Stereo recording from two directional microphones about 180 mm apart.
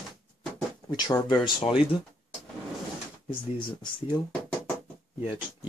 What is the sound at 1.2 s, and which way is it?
Speech, 30° left (ahead or behind).